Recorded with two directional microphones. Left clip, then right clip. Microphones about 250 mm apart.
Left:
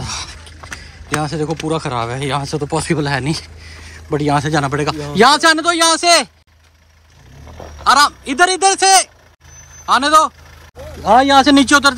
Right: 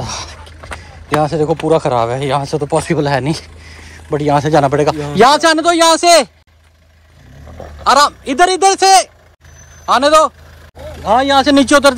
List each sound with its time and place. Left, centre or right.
0.0 s a sound: centre
1.7 s speech: centre
7.8 s speech: centre
11.0 s speech: left